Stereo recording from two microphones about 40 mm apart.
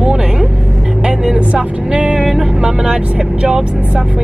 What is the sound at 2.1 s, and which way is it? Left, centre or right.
Vehicle, centre.